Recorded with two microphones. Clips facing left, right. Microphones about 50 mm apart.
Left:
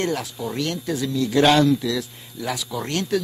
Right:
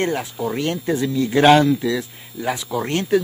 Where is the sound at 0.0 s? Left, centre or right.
Right.